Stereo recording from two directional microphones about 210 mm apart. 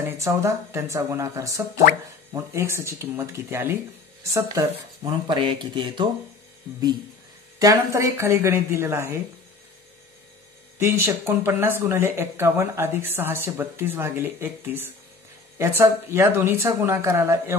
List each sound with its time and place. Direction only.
0.0 s speech: 15° right (ahead or behind)
7.5 s speech: 15° right (ahead or behind)
10.8 s speech: 10° right (ahead or behind)